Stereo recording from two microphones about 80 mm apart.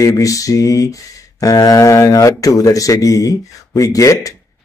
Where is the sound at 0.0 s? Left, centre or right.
Left.